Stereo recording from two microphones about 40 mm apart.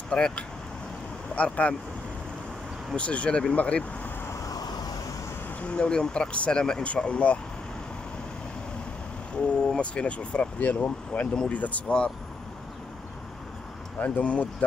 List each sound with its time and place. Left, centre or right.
0.1 s speech: left
3.0 s speech: left
5.6 s speech: left
6.5 s speech: centre
6.8 s speech: left
9.3 s a sound: left
9.8 s speech: left
10.6 s speech: left
13.9 s speech: left